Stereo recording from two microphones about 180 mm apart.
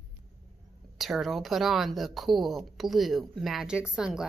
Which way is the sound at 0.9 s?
Centre (ahead or behind).